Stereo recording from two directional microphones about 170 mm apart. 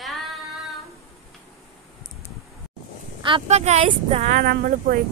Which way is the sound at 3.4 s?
40° right (ahead or behind).